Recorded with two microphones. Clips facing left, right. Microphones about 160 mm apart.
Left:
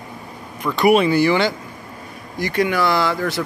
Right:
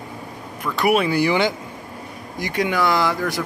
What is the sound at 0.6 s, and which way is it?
Speech, 5° right (ahead or behind).